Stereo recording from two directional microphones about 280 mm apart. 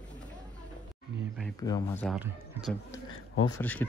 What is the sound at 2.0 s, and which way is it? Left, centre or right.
Speech, centre.